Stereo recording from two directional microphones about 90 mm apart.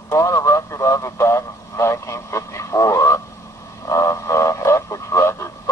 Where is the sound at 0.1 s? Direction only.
35° left (ahead or behind).